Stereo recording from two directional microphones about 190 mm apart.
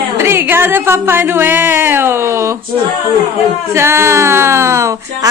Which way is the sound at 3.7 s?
15° right (ahead or behind).